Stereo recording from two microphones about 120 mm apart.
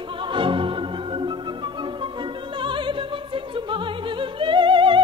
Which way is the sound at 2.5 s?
45° right (ahead or behind).